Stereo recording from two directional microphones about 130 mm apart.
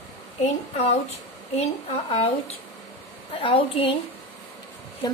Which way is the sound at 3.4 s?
45° left (ahead or behind).